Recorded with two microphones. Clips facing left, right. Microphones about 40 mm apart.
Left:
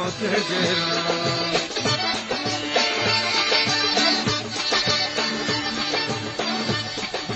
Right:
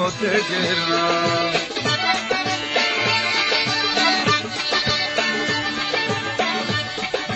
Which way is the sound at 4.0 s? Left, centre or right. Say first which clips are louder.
Right 4 dB; right.